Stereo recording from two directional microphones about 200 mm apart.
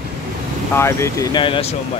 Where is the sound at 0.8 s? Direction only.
15° left (ahead or behind).